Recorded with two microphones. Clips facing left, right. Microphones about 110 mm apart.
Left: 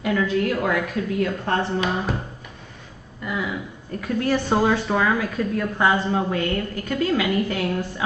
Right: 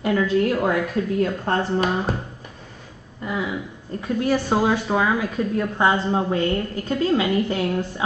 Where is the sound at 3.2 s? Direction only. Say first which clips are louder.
Right 1 dB; 30° right (ahead or behind).